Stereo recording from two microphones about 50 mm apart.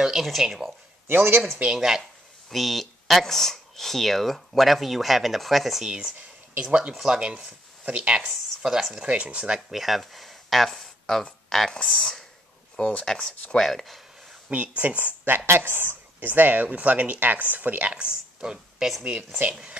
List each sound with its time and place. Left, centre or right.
0.0 s speech: centre
1.0 s speech: right
1.8 s speech: centre
5.9 s speech: centre
8.2 s speech: centre
9.0 s speech: right
9.7 s speech: centre
14.8 s speech: right
15.2 s speech: right
17.9 s speech: centre